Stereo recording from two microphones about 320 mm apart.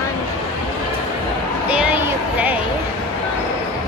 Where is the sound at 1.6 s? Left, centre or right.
Centre.